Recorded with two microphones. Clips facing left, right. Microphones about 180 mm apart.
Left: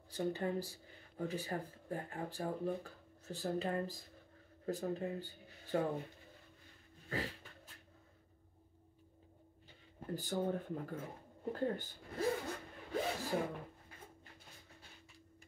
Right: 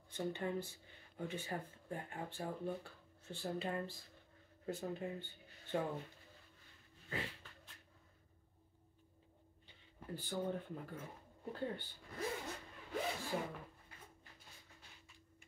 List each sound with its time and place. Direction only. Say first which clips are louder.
0.1 s speech: left 3 dB; 35° left (ahead or behind)
7.1 s a sound: left 4 dB; 40° left (ahead or behind)
9.7 s speech: left 5 dB; 45° left (ahead or behind)
11.5 s zipper: left 5 dB; 45° left (ahead or behind)